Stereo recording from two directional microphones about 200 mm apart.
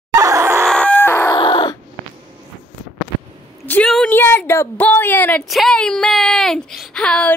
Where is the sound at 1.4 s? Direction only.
25° left (ahead or behind).